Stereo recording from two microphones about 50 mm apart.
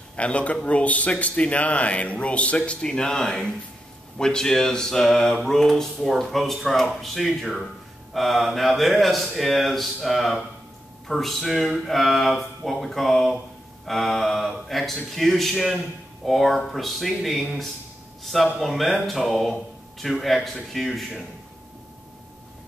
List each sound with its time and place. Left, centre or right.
0.1 s speech: left
4.2 s a sound: centre
8.1 s speech: centre